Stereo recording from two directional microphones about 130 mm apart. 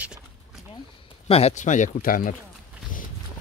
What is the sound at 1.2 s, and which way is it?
Speech, 50° left (ahead or behind).